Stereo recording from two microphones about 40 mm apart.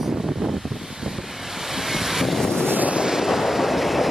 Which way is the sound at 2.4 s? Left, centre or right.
Centre.